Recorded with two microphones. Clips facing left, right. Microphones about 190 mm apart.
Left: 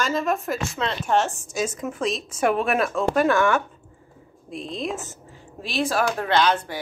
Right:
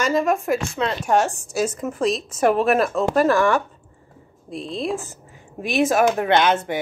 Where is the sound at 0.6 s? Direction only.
Centre (ahead or behind).